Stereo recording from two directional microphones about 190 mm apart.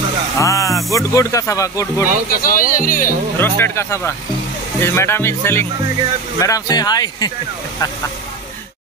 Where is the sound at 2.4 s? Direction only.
45° left (ahead or behind).